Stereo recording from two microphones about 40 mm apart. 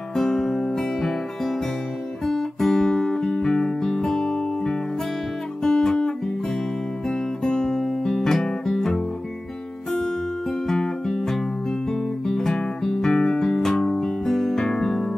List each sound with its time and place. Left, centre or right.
0.1 s music: centre
2.2 s guitar: centre
10.7 s music: centre